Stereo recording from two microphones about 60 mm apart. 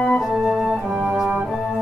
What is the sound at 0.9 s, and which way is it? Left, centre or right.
Music, centre.